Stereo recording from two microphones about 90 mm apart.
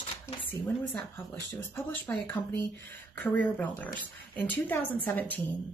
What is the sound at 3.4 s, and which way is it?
Speech, 15° left (ahead or behind).